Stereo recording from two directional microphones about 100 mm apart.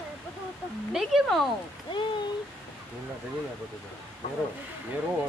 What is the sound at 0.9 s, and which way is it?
Speech, centre (ahead or behind).